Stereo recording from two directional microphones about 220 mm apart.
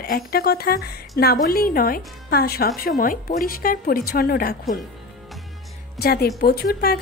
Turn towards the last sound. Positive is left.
turn(degrees=45)  # may be behind; listen again after turning